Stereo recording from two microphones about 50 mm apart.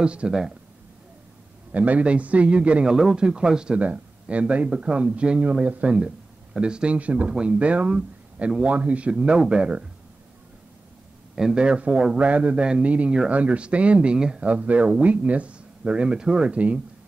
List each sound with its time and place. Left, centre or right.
0.0 s speech: right
1.7 s speech: right
3.8 s speech: right
11.5 s speech: right
16.5 s speech: right